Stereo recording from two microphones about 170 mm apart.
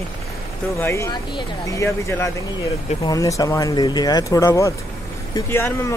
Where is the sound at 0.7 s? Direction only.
15° left (ahead or behind).